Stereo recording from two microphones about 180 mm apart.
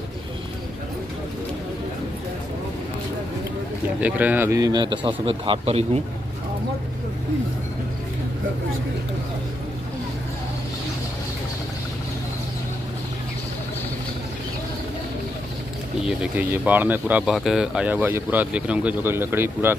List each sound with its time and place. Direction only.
4.0 s a man's voice: 10° right (ahead or behind); by 5.9 s 30° right (ahead or behind)
16.1 s speech: 5° right (ahead or behind)